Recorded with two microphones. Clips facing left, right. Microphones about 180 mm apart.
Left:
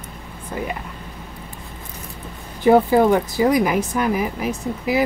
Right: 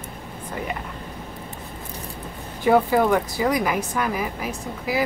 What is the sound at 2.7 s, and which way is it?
Speech, 25° left (ahead or behind).